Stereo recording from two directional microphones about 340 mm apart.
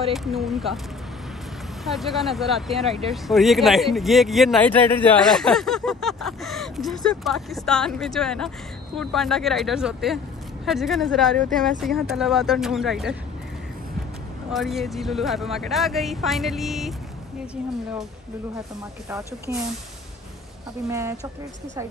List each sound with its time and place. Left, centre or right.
0.1 s speech: centre
1.9 s speech: centre
14.5 s speech: centre
19.0 s speech: centre
20.9 s a woman's voice: centre